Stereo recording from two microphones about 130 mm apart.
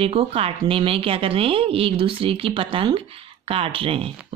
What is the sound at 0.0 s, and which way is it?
Speech, 45° right (ahead or behind).